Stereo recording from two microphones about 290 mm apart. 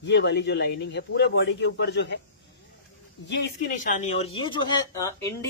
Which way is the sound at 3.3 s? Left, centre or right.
Left.